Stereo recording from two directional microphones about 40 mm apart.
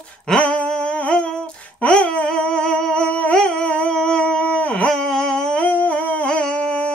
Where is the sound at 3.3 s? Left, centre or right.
Left.